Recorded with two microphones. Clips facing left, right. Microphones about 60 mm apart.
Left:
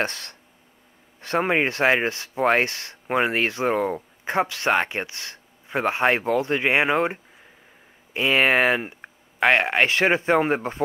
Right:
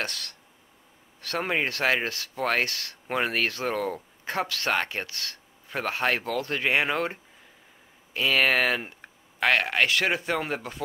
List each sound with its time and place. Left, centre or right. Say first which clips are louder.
0.0 s speech: left 6 dB; left